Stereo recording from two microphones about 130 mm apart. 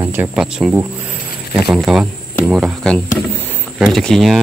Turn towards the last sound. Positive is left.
turn(degrees=0)  # may be behind; listen again after turning